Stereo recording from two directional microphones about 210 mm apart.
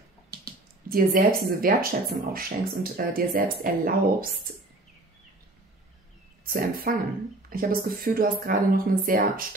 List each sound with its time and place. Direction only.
0.8 s speech: 40° right (ahead or behind)
6.4 s speech: 45° right (ahead or behind)